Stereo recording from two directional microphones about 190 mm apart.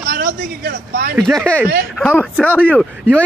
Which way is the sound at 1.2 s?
5° left (ahead or behind).